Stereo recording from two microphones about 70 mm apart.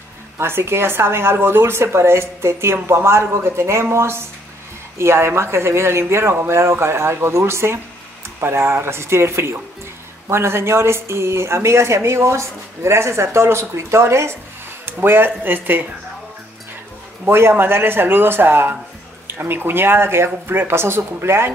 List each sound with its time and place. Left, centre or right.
0.4 s speech: right
17.2 s speech: right